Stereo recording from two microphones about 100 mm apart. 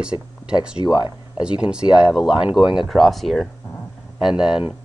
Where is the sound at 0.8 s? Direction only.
45° left (ahead or behind).